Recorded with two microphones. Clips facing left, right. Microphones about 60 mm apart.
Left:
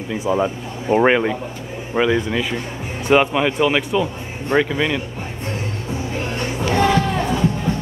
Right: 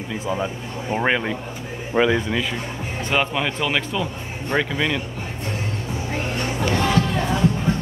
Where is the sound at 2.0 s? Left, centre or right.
Centre.